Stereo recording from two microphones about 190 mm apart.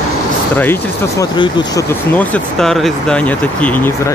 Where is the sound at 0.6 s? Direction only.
15° left (ahead or behind).